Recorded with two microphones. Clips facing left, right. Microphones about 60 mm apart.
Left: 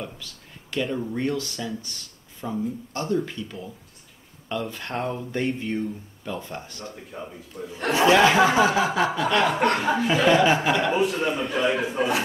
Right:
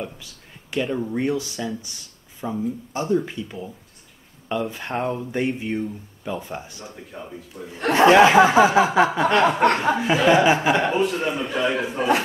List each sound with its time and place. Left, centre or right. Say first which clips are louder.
0.0 s speech: right 3 dB; centre
8.1 s snicker: right 4 dB; right
9.9 s speech: right 2 dB; centre
10.9 s a man's voice: right 1 dB; centre